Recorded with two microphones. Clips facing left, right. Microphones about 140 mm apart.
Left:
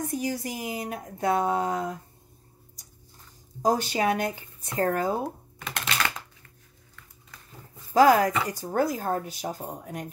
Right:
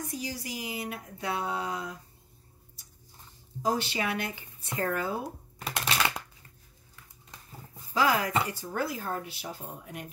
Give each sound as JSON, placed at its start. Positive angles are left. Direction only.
{"t": 0.0, "sound": "speech", "side_deg": 55}
{"t": 3.6, "sound": "speech", "side_deg": 45}
{"t": 5.8, "sound": "a sound", "side_deg": -10}
{"t": 7.9, "sound": "speech", "side_deg": 45}